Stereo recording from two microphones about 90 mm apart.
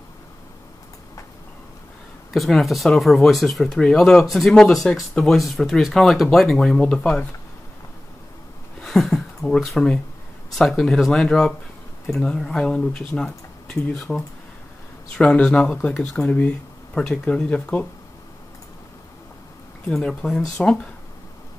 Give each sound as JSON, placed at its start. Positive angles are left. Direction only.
{"t": 2.3, "sound": "speech", "side_deg": 0}
{"t": 8.8, "sound": "speech", "side_deg": 0}
{"t": 19.9, "sound": "speech", "side_deg": 10}